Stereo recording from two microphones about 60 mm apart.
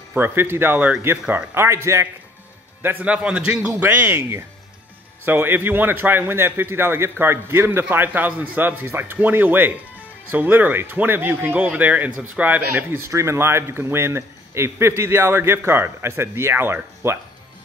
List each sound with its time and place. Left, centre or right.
0.1 s speech: right
1.5 s a man's voice: right
2.8 s speech: right
3.1 s speech: right
12.7 s a man's voice: right
13.1 s a man's voice: right